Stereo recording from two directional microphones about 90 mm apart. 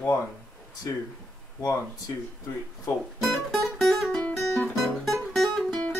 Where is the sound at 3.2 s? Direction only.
Centre (ahead or behind).